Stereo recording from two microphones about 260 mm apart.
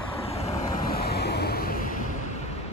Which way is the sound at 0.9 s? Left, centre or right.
Left.